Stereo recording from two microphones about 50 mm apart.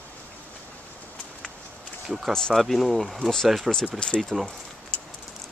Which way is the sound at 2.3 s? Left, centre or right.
Centre.